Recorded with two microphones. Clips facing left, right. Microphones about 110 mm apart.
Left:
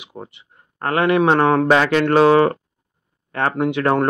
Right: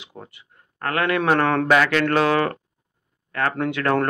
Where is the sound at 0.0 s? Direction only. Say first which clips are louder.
Left 5 dB; 20° left (ahead or behind).